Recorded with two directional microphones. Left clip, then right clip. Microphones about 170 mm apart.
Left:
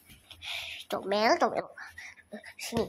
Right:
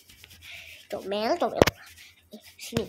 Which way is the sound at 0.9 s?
Centre (ahead or behind).